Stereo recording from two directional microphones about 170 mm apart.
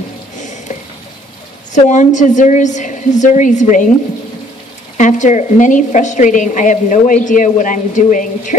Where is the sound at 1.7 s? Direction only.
45° left (ahead or behind).